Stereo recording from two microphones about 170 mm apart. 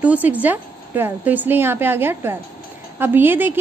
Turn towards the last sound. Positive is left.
turn(degrees=-10)  # may be behind; listen again after turning